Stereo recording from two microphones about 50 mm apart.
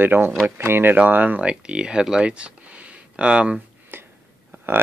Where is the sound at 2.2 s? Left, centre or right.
Right.